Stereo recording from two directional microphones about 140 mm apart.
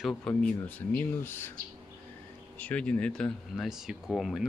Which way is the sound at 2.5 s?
10° left (ahead or behind).